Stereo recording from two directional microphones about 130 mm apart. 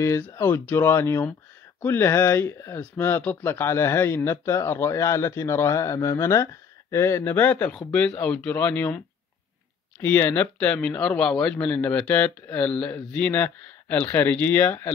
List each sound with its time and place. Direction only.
0.0 s speech: 20° left (ahead or behind)